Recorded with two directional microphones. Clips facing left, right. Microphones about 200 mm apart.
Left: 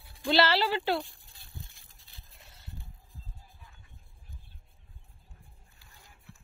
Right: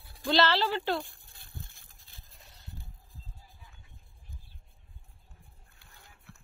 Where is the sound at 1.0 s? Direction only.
50° right (ahead or behind).